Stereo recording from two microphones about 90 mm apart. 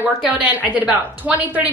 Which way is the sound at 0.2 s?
15° right (ahead or behind).